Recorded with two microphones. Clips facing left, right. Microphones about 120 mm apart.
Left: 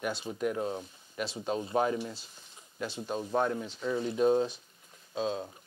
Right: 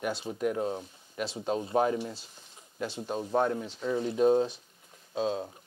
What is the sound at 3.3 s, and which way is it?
Speech, 30° right (ahead or behind).